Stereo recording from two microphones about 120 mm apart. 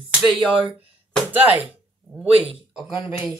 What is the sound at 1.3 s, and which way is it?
Speech, 15° right (ahead or behind).